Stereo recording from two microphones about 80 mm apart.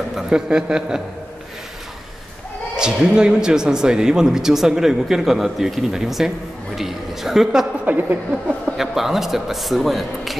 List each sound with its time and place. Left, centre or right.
0.1 s speech: centre
2.7 s speech: centre
7.8 s a woman's voice: right
8.7 s speech: centre